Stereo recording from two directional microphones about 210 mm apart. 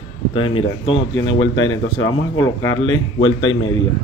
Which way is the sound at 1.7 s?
15° left (ahead or behind).